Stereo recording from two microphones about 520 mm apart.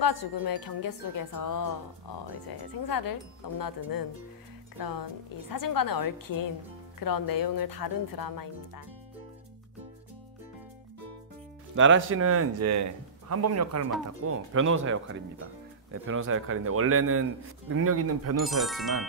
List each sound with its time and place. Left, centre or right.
0.0 s speech: left
11.7 s speech: right
18.4 s speech: centre